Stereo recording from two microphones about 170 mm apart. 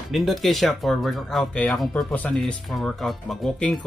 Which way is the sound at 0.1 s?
Centre (ahead or behind).